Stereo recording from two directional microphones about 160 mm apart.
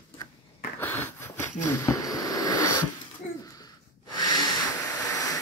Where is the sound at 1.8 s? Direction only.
20° left (ahead or behind).